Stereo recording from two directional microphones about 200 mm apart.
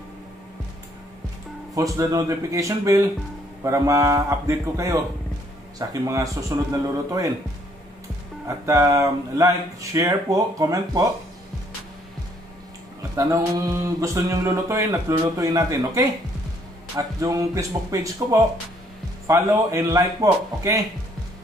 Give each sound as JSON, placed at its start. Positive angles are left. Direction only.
{"t": 1.8, "sound": "speech", "side_deg": -15}
{"t": 8.5, "sound": "speech", "side_deg": -15}
{"t": 13.1, "sound": "speech", "side_deg": -15}